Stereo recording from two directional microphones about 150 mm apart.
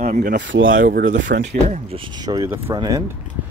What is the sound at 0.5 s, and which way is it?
Speech, 90° right.